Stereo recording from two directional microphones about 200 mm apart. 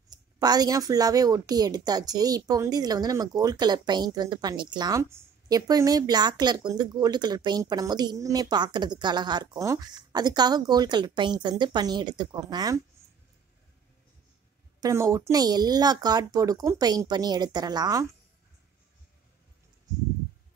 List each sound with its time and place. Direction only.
0.1 s a woman's voice: 20° right (ahead or behind)
14.8 s a woman's voice: 15° right (ahead or behind)